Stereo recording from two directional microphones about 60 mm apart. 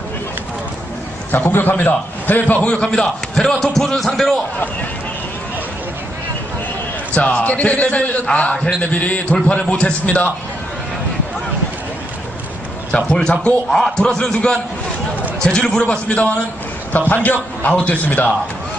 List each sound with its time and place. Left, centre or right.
1.3 s a man's voice: left; by 4.4 s centre
7.2 s a man's voice: centre
12.9 s a man's voice: centre